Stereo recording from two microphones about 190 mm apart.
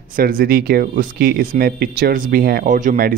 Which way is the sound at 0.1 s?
50° right (ahead or behind).